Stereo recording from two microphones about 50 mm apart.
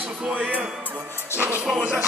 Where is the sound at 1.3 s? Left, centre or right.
Right.